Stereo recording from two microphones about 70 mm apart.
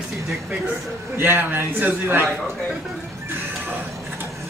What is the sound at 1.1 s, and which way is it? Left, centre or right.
A man's voice, right.